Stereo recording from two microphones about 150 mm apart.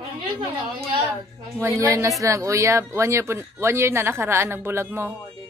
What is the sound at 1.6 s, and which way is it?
A woman's voice, 20° right (ahead or behind).